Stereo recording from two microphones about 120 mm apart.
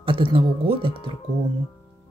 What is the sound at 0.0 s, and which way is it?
Speech, 45° right (ahead or behind).